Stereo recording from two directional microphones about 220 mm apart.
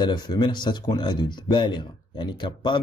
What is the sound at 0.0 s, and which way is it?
A man's voice, 20° left (ahead or behind).